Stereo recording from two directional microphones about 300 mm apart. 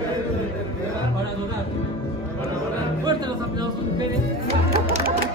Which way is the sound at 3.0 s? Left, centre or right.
Centre.